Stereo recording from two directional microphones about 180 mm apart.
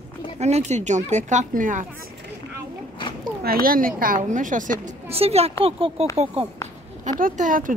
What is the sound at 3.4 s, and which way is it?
Speech, 55° right (ahead or behind).